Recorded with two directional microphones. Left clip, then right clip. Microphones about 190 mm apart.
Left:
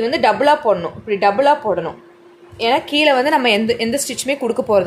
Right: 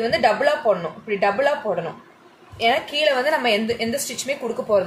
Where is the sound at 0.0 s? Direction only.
50° left (ahead or behind).